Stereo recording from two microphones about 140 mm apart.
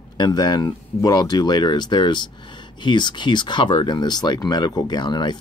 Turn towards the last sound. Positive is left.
turn(degrees=30)  # may be behind; listen again after turning